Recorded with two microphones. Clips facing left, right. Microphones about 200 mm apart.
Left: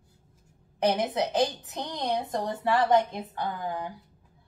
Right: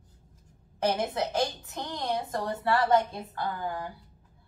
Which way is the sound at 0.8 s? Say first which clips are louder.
Left 2 dB; 15° left (ahead or behind).